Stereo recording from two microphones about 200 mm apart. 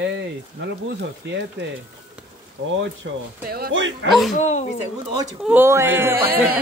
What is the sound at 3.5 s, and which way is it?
Speech, 60° right (ahead or behind).